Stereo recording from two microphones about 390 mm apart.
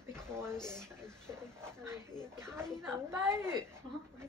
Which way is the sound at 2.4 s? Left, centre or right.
Centre.